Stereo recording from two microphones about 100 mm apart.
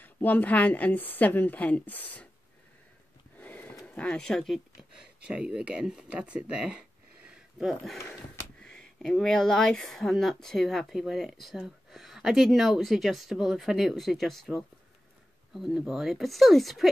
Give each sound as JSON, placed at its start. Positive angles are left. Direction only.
{"t": 0.0, "sound": "a woman's voice", "side_deg": 15}
{"t": 3.3, "sound": "a sound", "side_deg": 15}
{"t": 3.8, "sound": "speech", "side_deg": 10}
{"t": 4.9, "sound": "speech", "side_deg": -10}
{"t": 7.2, "sound": "a sound", "side_deg": -5}
{"t": 8.1, "sound": "speech", "side_deg": 10}